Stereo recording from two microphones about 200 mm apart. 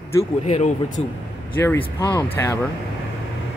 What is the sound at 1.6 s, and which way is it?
Speech, 10° left (ahead or behind).